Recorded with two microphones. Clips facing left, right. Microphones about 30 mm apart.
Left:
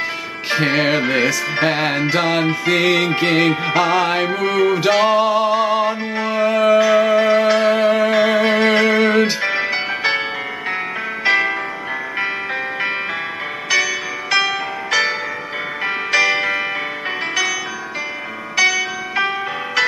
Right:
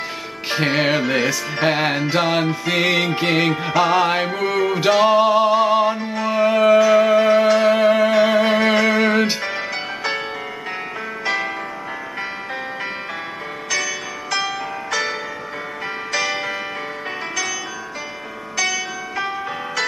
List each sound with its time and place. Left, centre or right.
0.5 s music: centre
5.9 s music: left
6.3 s music: centre
9.4 s music: left
11.2 s music: left
16.2 s music: centre
18.6 s music: centre
19.1 s music: left